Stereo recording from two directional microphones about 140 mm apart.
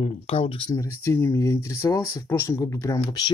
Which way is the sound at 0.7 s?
20° left (ahead or behind).